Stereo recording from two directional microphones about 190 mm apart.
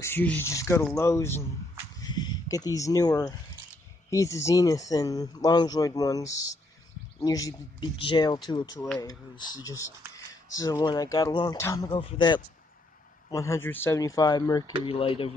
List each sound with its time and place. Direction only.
0.0 s speech: 10° left (ahead or behind)
11.9 s speech: 30° left (ahead or behind)
13.3 s speech: 15° left (ahead or behind)